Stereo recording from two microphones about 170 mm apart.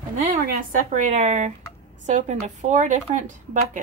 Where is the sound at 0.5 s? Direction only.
50° right (ahead or behind).